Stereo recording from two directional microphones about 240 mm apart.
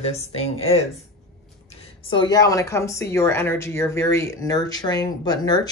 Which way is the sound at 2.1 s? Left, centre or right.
Centre.